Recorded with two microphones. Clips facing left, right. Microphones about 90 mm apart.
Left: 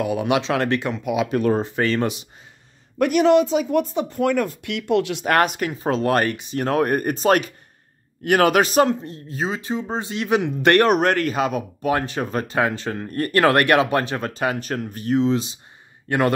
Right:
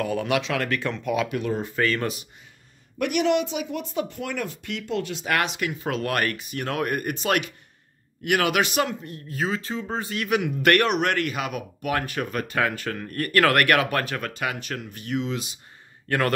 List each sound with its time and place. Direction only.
0.0 s speech: 15° left (ahead or behind)
0.4 s speech: 25° left (ahead or behind)
1.3 s speech: 45° left (ahead or behind)
1.6 s speech: 25° left (ahead or behind)
3.0 s speech: 35° left (ahead or behind)
4.6 s speech: 65° left (ahead or behind)
5.3 s speech: 45° left (ahead or behind); by 16.3 s 20° left (ahead or behind)